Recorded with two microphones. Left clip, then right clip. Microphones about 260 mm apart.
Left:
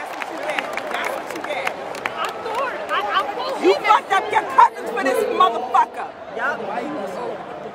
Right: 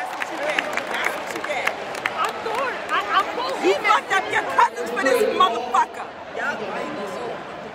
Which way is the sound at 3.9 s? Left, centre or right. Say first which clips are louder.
Left 3 dB; left.